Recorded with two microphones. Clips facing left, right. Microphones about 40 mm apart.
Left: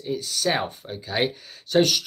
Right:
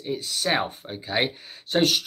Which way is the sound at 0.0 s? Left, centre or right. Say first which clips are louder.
Left 2 dB; right.